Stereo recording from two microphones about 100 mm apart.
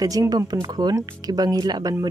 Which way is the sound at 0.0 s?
35° right (ahead or behind).